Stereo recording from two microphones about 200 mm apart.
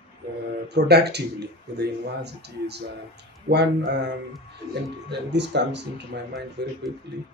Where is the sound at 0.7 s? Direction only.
55° right (ahead or behind).